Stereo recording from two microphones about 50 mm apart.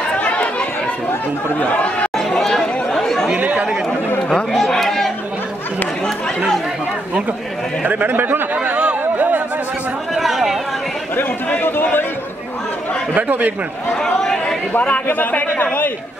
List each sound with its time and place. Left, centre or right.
0.1 s chatter: left
2.1 s chatter: centre
3.3 s chatter: right
4.6 s a sound: centre
7.8 s speech: right
8.6 s a sound: right
10.1 s chatter: centre
11.5 s a man's voice: left
13.1 s a man's voice: right
14.0 s chatter: centre
14.7 s a man's voice: left
15.4 s chatter: left